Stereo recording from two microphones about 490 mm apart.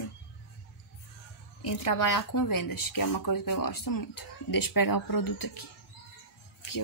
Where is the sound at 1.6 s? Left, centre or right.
Left.